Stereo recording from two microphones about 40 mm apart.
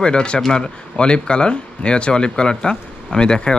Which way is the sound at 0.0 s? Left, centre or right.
Left.